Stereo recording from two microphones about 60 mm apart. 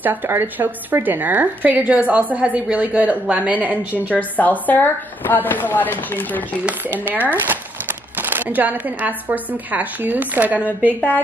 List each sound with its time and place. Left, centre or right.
0.0 s speech: right
4.4 s speech: left
7.2 s speech: right